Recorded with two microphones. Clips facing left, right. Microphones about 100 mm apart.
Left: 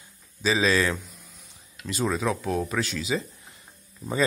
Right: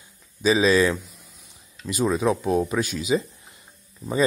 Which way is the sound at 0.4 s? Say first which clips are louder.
Right 5 dB; 15° right (ahead or behind).